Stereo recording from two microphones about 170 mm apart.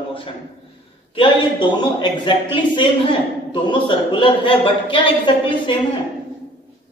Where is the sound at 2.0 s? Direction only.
30° left (ahead or behind).